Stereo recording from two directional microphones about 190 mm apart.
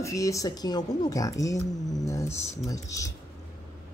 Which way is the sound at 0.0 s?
15° left (ahead or behind).